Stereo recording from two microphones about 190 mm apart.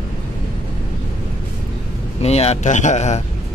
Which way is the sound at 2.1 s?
35° left (ahead or behind).